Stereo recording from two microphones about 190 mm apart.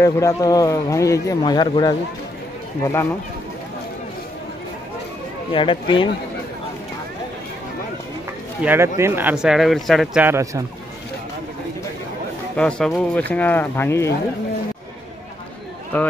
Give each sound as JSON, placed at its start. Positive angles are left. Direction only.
{"t": 0.0, "sound": "speech", "side_deg": 15}
{"t": 5.5, "sound": "speech", "side_deg": 25}
{"t": 8.6, "sound": "speech", "side_deg": -15}
{"t": 10.2, "sound": "speech", "side_deg": -15}
{"t": 12.5, "sound": "speech", "side_deg": 5}
{"t": 15.9, "sound": "speech", "side_deg": 10}